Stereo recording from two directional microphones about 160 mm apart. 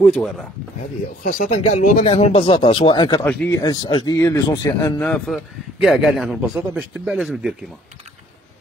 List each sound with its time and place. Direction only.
0.0 s a man's voice: centre (ahead or behind)
1.2 s speech: 55° left (ahead or behind); by 5.1 s 15° left (ahead or behind)
5.1 s a man's voice: centre (ahead or behind)